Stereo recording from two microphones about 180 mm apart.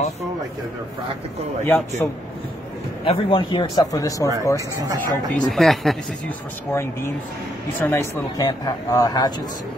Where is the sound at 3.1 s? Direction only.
25° left (ahead or behind).